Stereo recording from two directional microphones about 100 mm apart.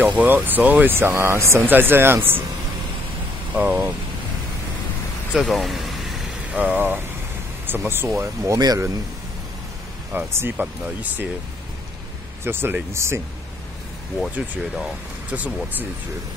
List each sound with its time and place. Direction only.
0.0 s speech: 15° right (ahead or behind)
3.5 s speech: 20° right (ahead or behind)
5.4 s vehicle: centre (ahead or behind)
6.5 s speech: 15° right (ahead or behind); by 8.9 s 35° right (ahead or behind)
10.1 s speech: 20° right (ahead or behind)
12.4 s speech: 20° right (ahead or behind)
15.2 s speech: 15° right (ahead or behind)